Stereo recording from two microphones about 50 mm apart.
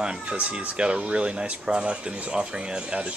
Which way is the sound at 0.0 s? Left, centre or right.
Centre.